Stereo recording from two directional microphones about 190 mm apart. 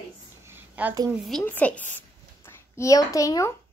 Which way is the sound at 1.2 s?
5° left (ahead or behind).